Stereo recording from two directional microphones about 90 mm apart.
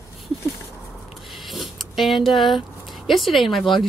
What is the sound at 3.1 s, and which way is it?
Speech, centre (ahead or behind).